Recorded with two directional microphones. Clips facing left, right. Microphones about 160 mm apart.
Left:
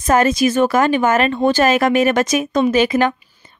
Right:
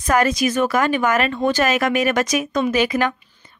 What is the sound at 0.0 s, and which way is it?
A woman's voice, 25° left (ahead or behind).